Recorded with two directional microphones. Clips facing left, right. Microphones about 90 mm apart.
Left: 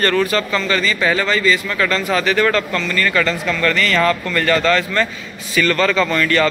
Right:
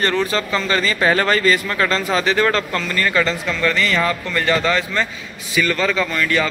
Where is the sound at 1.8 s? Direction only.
30° right (ahead or behind).